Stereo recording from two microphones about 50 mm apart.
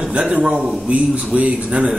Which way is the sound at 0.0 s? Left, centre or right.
Right.